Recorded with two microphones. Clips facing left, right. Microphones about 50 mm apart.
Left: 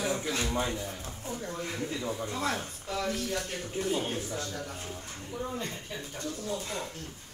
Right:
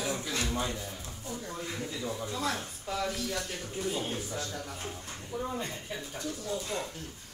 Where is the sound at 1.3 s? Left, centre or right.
Left.